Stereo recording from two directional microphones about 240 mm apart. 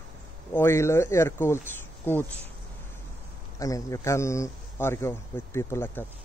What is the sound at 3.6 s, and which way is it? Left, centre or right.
Speech, centre.